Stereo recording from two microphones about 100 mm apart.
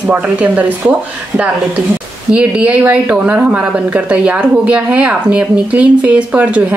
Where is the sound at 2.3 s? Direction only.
10° right (ahead or behind).